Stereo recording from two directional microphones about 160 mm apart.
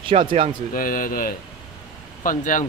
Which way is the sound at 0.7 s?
60° left (ahead or behind).